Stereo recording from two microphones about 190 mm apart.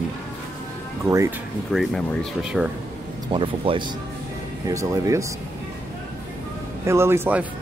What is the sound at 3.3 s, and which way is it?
A man's voice, 25° right (ahead or behind).